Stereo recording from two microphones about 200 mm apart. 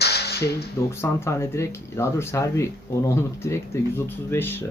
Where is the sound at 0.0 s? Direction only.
55° left (ahead or behind).